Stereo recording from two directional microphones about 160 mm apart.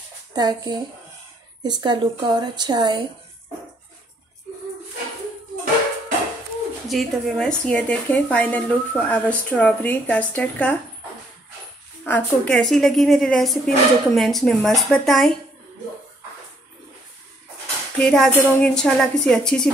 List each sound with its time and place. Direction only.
0.3 s a woman's voice: 25° right (ahead or behind)
6.9 s a woman's voice: centre (ahead or behind)
12.0 s a woman's voice: 5° left (ahead or behind)
17.9 s a woman's voice: centre (ahead or behind)